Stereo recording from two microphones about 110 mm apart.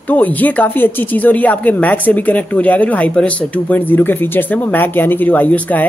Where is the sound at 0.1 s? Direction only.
15° left (ahead or behind).